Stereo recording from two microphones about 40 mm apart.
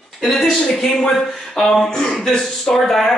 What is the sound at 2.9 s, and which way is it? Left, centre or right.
Speech, centre.